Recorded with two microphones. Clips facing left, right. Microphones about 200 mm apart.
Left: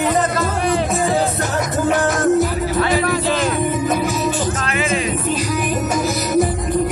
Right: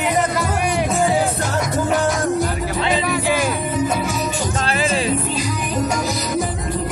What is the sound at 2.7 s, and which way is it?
Music, 15° right (ahead or behind).